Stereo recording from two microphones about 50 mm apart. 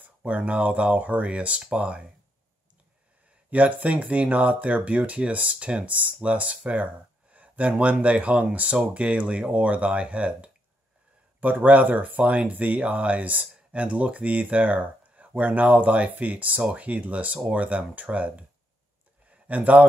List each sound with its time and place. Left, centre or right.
0.2 s speech: right
3.4 s speech: right